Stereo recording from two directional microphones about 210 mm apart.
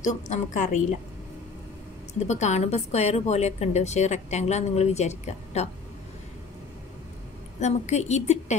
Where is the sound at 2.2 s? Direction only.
35° left (ahead or behind).